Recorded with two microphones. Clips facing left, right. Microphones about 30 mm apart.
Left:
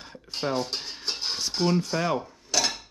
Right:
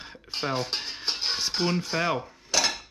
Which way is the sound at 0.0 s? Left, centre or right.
Centre.